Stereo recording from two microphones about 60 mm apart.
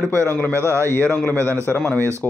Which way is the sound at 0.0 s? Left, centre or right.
Right.